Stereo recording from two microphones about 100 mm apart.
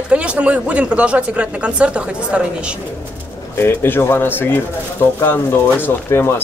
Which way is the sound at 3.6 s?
25° left (ahead or behind).